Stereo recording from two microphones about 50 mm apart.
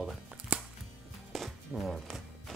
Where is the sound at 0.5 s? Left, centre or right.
Right.